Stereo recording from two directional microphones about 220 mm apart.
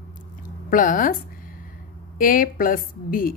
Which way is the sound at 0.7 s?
40° left (ahead or behind).